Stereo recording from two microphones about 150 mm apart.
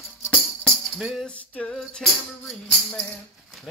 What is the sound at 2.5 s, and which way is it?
Speech, centre (ahead or behind).